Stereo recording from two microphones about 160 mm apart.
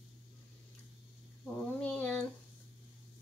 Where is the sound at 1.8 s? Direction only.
10° left (ahead or behind).